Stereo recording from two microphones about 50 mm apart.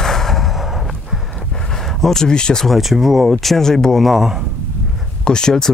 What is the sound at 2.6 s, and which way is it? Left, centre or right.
Speech, centre.